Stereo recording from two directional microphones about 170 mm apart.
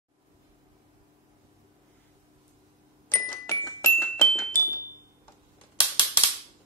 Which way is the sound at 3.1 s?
20° left (ahead or behind).